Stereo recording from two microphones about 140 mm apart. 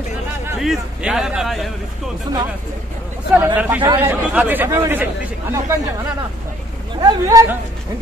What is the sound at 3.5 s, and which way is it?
Speech, 10° right (ahead or behind).